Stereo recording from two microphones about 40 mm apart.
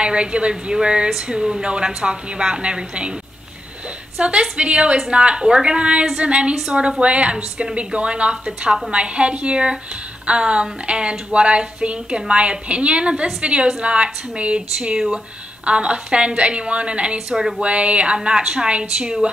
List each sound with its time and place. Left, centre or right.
0.0 s speech: right
1.1 s a sound: centre
1.6 s speech: right
4.2 s speech: right
6.5 s a sound: centre
7.0 s speech: right
15.6 s speech: right